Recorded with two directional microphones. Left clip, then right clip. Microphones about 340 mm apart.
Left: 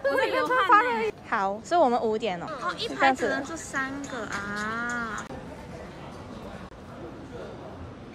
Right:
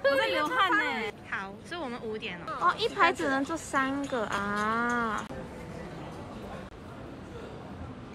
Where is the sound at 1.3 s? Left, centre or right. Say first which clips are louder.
Left 11 dB; centre.